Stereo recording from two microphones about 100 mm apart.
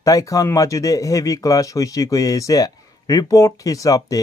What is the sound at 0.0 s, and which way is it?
Speech, 35° left (ahead or behind).